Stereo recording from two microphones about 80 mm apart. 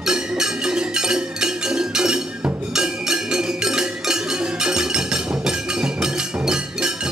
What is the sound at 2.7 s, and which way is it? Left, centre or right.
Music, centre.